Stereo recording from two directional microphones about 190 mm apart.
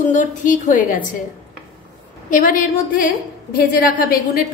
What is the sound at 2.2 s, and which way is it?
A woman's voice, 45° left (ahead or behind).